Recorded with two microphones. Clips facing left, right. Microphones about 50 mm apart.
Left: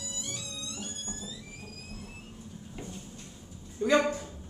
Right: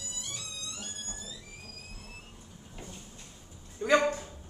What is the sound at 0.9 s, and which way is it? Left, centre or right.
Music, right.